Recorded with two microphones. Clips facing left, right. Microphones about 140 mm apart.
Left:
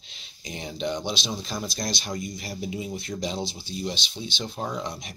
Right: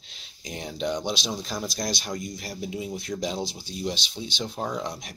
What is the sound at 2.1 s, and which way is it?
Speech, 5° left (ahead or behind).